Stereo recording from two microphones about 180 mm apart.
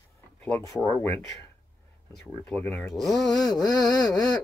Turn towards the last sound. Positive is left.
turn(degrees=20)  # may be behind; listen again after turning